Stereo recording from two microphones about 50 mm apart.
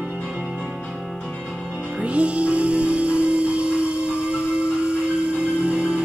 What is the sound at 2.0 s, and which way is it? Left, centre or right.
Music, right.